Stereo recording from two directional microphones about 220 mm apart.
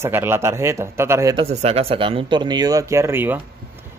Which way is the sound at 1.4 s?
30° right (ahead or behind).